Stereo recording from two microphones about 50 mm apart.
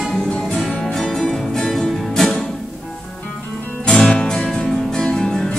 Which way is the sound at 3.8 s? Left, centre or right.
Centre.